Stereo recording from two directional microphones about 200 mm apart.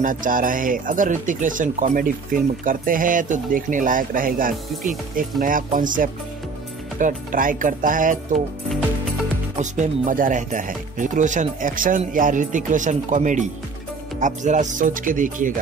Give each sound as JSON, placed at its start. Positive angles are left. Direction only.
{"t": 0.0, "sound": "speech", "side_deg": -40}
{"t": 9.6, "sound": "speech", "side_deg": -40}